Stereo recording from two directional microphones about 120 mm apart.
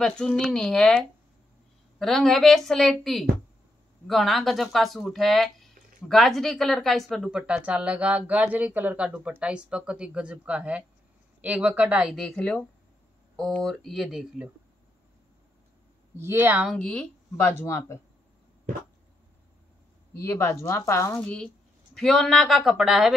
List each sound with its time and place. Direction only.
0.0 s a woman's voice: 5° left (ahead or behind)
12.2 s a woman's voice: 5° left (ahead or behind)
16.2 s speech: 20° right (ahead or behind)
16.7 s speech: 10° left (ahead or behind)
20.2 s a woman's voice: 20° left (ahead or behind); by 23.1 s 5° right (ahead or behind)